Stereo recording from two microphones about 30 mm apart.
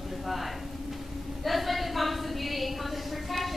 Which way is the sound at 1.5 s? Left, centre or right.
Centre.